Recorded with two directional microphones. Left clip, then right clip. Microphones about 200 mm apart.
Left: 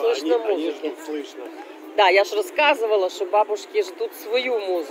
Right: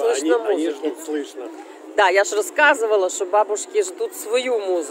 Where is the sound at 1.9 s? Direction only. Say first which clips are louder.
Even; 20° right (ahead or behind).